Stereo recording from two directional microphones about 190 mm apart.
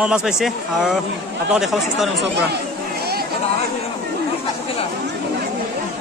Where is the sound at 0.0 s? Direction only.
5° right (ahead or behind).